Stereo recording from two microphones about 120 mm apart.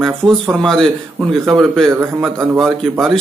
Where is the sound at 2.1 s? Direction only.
15° right (ahead or behind).